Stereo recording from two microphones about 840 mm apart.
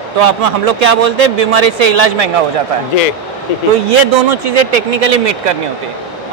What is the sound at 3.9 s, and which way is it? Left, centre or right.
Speech, right.